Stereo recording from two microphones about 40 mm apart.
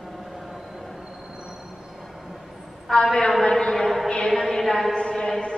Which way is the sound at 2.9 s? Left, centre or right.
Centre.